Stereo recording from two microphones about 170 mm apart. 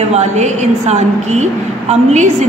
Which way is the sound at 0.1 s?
40° right (ahead or behind).